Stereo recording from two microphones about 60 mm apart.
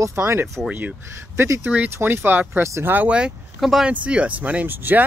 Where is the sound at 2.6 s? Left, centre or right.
Right.